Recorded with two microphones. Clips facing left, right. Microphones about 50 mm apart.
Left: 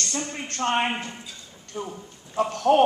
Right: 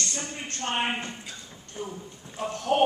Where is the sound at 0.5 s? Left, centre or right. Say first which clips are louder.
Left 6 dB; left.